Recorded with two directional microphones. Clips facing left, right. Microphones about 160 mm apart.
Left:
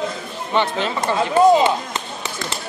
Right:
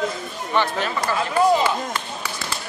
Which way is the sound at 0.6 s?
25° left (ahead or behind).